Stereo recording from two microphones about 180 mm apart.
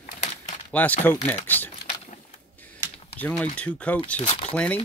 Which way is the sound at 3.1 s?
10° left (ahead or behind).